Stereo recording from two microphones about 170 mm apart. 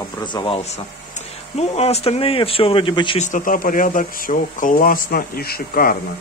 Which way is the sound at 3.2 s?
50° left (ahead or behind).